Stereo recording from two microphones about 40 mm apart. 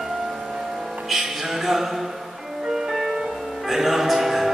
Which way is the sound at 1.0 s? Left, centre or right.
Centre.